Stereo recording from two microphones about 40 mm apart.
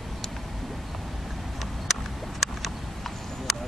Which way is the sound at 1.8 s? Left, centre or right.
Centre.